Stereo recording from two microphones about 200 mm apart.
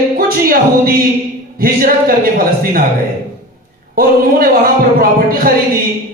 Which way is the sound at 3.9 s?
45° right (ahead or behind).